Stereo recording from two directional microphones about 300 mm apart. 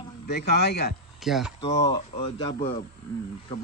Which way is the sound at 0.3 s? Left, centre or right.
Left.